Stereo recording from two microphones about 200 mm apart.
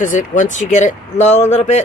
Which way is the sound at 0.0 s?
40° left (ahead or behind).